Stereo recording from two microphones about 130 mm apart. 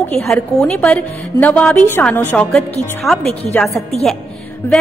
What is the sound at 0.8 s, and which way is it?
Music, 10° left (ahead or behind).